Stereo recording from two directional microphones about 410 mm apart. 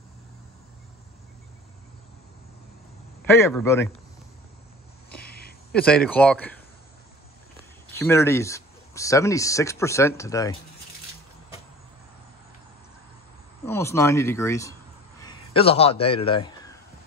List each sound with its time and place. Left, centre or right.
3.3 s speech: centre
5.1 s a sound: left
5.9 s speech: centre
8.0 s speech: centre
13.7 s speech: centre